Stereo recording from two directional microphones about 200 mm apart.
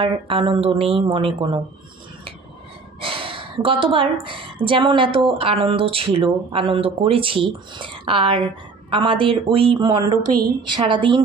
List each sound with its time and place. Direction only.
0.0 s speech: 25° right (ahead or behind)
3.0 s a sound: 25° right (ahead or behind)
4.6 s speech: 25° right (ahead or behind)